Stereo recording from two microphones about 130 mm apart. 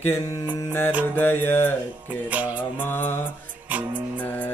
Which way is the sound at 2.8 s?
15° left (ahead or behind).